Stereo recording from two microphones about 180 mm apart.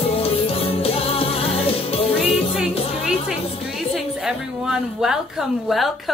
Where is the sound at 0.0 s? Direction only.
30° left (ahead or behind).